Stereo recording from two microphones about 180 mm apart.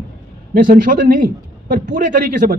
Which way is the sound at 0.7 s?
50° right (ahead or behind).